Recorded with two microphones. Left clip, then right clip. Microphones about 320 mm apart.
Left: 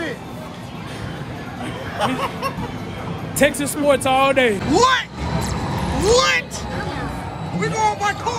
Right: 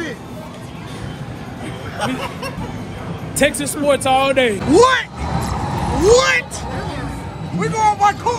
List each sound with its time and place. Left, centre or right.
2.0 s speech: left
3.3 s speech: centre
5.4 s vehicle: centre
6.0 s speech: centre
7.6 s a sound: centre